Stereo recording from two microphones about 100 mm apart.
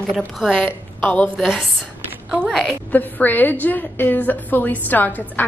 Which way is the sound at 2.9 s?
20° left (ahead or behind).